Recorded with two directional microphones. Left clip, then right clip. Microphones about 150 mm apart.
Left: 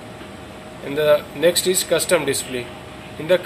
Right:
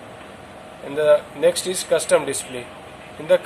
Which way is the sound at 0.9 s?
10° right (ahead or behind).